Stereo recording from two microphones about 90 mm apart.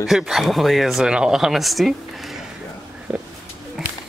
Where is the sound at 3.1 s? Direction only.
10° right (ahead or behind).